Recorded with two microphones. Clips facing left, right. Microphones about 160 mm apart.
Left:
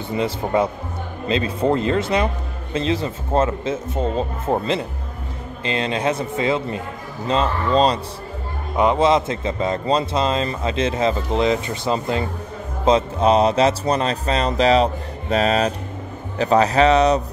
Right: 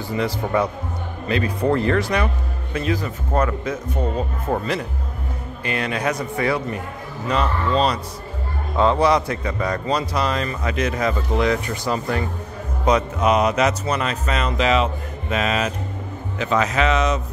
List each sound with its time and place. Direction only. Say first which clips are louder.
0.1 s a man's voice: left 1 dB; 25° left (ahead or behind)
8.7 s a man's voice: left 1 dB; 20° left (ahead or behind); by 17.2 s 35° left (ahead or behind)